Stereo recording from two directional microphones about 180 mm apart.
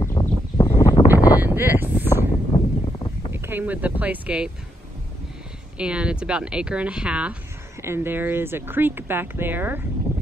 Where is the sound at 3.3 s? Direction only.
10° right (ahead or behind).